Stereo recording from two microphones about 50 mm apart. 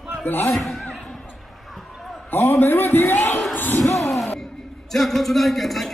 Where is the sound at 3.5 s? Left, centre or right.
Left.